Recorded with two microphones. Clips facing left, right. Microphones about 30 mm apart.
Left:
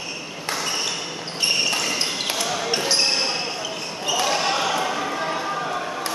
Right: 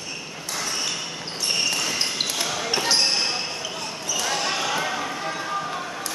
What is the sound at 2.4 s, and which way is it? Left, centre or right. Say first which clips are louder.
Basketball bounce: left 1 dB; centre.